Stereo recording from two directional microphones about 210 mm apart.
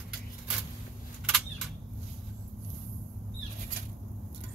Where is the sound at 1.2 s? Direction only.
Centre (ahead or behind).